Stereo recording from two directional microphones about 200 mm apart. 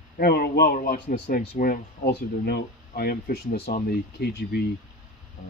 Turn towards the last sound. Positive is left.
turn(degrees=55)  # may be behind; listen again after turning